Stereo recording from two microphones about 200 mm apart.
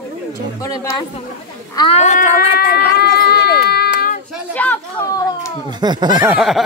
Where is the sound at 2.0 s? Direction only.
35° left (ahead or behind).